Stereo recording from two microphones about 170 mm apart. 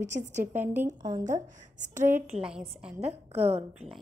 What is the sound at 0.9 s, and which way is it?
Speech, 25° right (ahead or behind).